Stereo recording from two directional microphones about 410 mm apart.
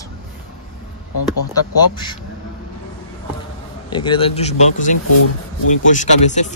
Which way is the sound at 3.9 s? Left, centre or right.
Centre.